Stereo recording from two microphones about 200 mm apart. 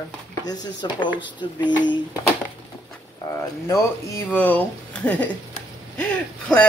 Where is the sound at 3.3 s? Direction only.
15° left (ahead or behind).